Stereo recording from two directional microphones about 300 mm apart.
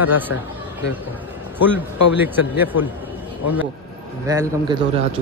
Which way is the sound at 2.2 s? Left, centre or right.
Centre.